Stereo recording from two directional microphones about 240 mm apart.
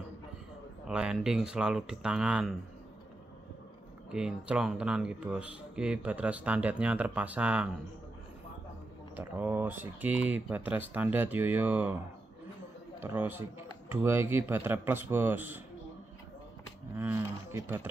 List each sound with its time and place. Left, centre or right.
0.8 s speech: centre
4.1 s speech: centre
9.1 s speech: centre
13.0 s speech: centre
16.9 s speech: centre